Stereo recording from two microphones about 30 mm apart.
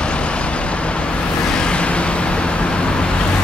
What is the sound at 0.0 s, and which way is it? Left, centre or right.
Vehicle, left.